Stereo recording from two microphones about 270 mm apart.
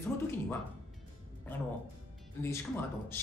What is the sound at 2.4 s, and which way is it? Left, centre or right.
Speech, centre.